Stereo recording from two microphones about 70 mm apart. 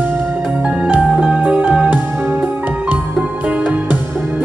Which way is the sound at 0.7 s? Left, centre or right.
Centre.